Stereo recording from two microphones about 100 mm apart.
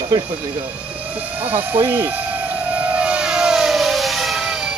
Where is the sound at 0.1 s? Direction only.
40° right (ahead or behind).